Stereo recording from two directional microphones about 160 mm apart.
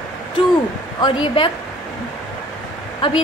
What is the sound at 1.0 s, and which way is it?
Speech, 30° left (ahead or behind).